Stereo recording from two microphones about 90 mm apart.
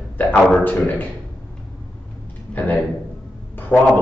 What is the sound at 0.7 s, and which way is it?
Speech, 15° left (ahead or behind).